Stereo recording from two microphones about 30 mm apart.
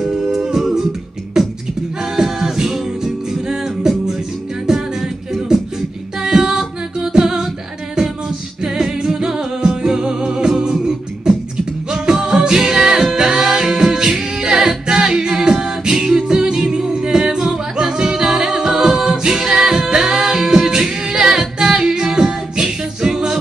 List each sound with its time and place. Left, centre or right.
0.3 s humming: centre
1.4 s beatboxing: centre
2.1 s music: centre
5.5 s beatboxing: centre
6.2 s female singing: centre
7.0 s a capella: right
8.6 s music: right
12.3 s music: right
13.9 s a capella: right
16.3 s music: right
18.2 s a capella: centre
19.2 s singing: centre
20.0 s music: centre
20.4 s a capella: right